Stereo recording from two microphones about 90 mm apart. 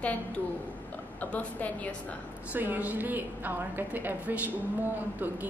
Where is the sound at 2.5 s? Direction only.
20° right (ahead or behind).